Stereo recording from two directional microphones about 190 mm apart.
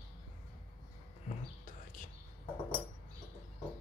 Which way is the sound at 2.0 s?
40° left (ahead or behind).